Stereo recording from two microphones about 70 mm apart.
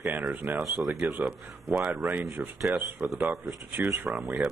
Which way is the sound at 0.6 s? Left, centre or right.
Centre.